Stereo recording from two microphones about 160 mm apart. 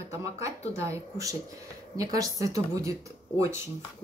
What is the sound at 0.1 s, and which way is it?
Speech, 20° right (ahead or behind).